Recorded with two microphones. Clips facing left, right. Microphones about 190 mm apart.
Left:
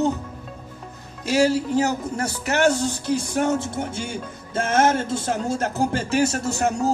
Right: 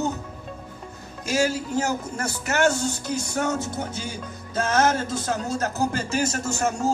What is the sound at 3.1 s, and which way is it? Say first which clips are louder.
Speech: left 5 dB; 30° left (ahead or behind).